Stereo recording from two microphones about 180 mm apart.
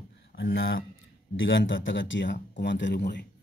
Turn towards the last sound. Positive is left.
turn(degrees=65)  # may be behind; listen again after turning